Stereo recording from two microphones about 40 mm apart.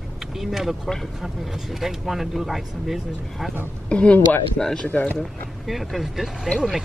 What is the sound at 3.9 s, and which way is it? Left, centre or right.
Speech, left.